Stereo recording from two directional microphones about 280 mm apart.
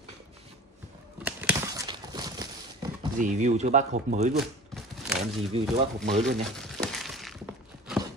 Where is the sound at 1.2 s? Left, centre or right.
Centre.